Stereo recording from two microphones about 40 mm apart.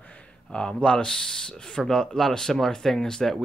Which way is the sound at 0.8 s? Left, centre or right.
Left.